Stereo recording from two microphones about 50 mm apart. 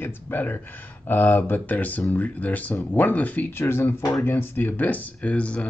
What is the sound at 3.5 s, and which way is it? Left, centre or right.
Speech, left.